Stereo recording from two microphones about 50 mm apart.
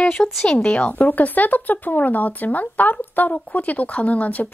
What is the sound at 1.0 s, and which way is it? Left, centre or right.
Speech, left.